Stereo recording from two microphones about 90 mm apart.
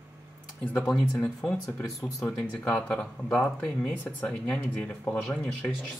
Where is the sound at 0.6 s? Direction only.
25° left (ahead or behind).